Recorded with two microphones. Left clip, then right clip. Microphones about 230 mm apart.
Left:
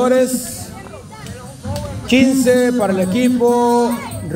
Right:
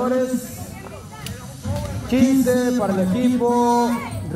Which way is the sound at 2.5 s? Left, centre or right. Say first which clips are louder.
Left 6 dB; left.